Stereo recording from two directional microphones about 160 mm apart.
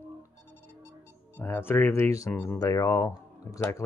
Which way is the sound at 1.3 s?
15° left (ahead or behind).